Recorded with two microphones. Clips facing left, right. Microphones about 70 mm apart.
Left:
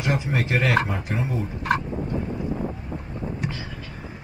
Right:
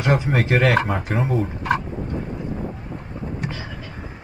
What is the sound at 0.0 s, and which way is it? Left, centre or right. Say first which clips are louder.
Speech: right 5 dB; right.